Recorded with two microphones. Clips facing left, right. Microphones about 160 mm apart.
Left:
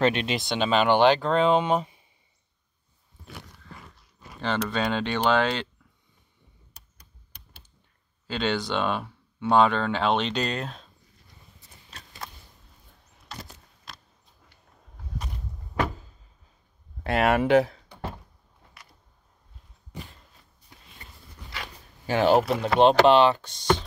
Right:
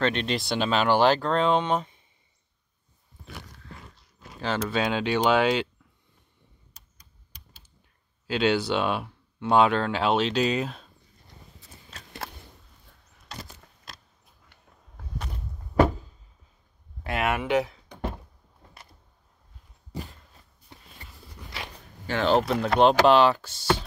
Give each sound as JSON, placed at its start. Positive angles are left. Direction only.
{"t": 0.0, "sound": "speech", "side_deg": 10}
{"t": 4.6, "sound": "speech", "side_deg": -5}
{"t": 6.7, "sound": "typing", "side_deg": 65}
{"t": 8.3, "sound": "speech", "side_deg": -10}
{"t": 17.0, "sound": "speech", "side_deg": 30}
{"t": 21.0, "sound": "a sound", "side_deg": -30}
{"t": 22.0, "sound": "speech", "side_deg": 10}